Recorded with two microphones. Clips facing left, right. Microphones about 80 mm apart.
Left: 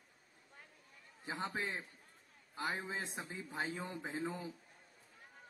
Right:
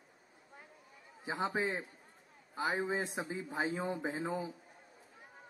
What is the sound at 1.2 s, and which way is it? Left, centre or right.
A man's voice, centre.